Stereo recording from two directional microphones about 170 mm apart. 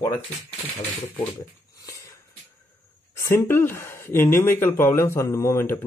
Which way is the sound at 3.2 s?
15° left (ahead or behind).